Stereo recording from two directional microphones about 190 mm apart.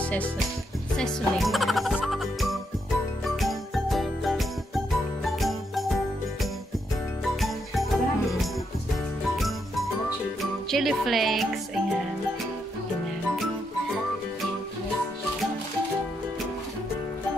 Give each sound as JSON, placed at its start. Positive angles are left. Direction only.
{"t": 0.0, "sound": "music", "side_deg": 5}
{"t": 0.9, "sound": "speech", "side_deg": 0}
{"t": 3.3, "sound": "jingle", "side_deg": 0}
{"t": 7.3, "sound": "jingle bell", "side_deg": 0}
{"t": 10.4, "sound": "music", "side_deg": 0}